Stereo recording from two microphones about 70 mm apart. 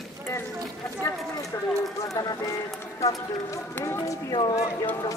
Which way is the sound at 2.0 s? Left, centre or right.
Left.